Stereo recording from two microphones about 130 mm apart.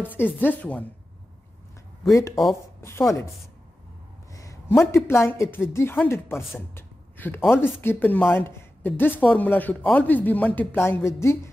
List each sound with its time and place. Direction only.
0.2 s speech: 15° left (ahead or behind)
2.0 s speech: 25° left (ahead or behind)
4.3 s a man's voice: 25° left (ahead or behind)
7.4 s speech: 5° right (ahead or behind)
7.8 s speech: 15° left (ahead or behind)